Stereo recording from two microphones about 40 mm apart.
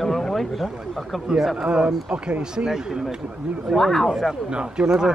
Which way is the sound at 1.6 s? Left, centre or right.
Right.